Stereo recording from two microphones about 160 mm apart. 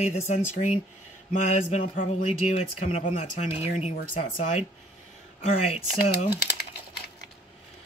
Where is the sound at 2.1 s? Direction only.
45° left (ahead or behind).